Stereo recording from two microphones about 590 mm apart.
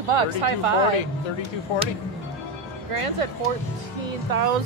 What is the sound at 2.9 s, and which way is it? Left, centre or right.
Speech, right.